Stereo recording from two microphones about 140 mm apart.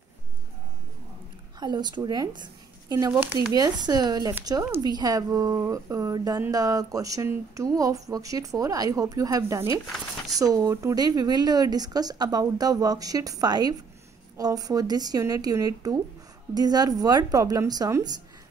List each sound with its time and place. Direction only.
1.6 s a woman's voice: 30° right (ahead or behind)
3.1 s speech: 15° right (ahead or behind)
3.5 s a woman's voice: 25° right (ahead or behind)